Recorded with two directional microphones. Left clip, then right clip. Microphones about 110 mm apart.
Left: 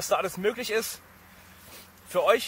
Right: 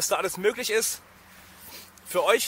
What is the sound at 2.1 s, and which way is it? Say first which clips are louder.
Speech: even; 45° right (ahead or behind).